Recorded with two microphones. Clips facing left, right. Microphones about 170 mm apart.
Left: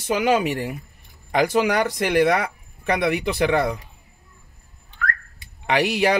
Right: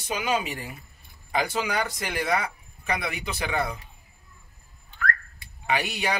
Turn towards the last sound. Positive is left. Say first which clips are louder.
# left 8 dB
turn(degrees=75)  # may be behind; listen again after turning